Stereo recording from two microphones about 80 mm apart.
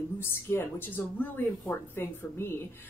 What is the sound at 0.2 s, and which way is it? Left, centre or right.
A woman's voice, left.